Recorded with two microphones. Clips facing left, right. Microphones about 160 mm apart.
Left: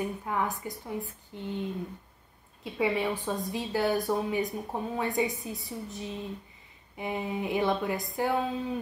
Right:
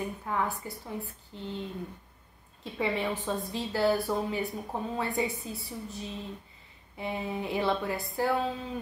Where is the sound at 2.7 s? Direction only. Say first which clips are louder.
Left 2 dB; 10° left (ahead or behind).